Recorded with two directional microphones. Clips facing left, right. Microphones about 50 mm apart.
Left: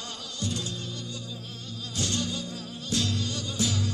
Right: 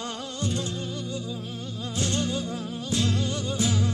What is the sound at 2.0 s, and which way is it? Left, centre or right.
Music, right.